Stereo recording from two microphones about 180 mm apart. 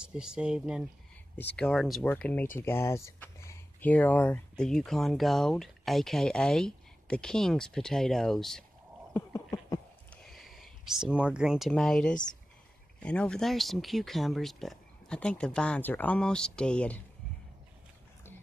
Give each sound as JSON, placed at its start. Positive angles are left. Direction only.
{"t": 0.0, "sound": "speech", "side_deg": -5}
{"t": 1.4, "sound": "speech", "side_deg": 5}
{"t": 9.1, "sound": "a sound", "side_deg": 15}
{"t": 10.2, "sound": "speech", "side_deg": 0}